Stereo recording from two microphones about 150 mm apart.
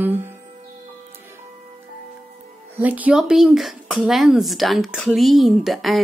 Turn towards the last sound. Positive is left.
turn(degrees=0)  # may be behind; listen again after turning